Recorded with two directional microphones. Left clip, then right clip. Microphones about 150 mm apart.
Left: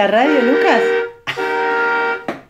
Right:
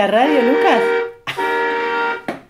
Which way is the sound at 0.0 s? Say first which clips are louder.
Left 1 dB; 10° right (ahead or behind).